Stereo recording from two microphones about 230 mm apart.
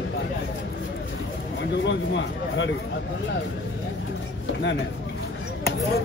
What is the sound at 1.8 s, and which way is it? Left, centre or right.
Speech, left.